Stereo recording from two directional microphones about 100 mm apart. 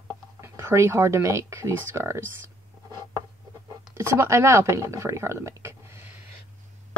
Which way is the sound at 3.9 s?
30° right (ahead or behind).